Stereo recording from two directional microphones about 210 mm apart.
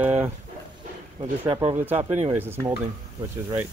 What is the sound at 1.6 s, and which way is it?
Speech, 10° right (ahead or behind).